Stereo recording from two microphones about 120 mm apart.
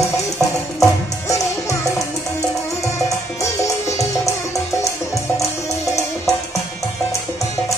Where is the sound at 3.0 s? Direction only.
25° left (ahead or behind).